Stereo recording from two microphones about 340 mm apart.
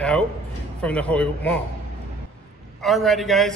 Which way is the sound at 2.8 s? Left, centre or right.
Centre.